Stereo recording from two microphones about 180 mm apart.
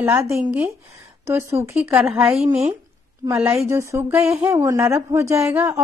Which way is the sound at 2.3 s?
35° right (ahead or behind).